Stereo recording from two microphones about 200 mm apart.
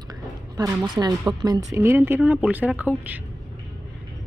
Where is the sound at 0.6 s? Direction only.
20° right (ahead or behind).